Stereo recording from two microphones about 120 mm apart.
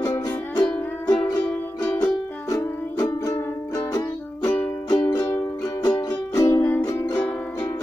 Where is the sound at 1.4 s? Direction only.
10° left (ahead or behind).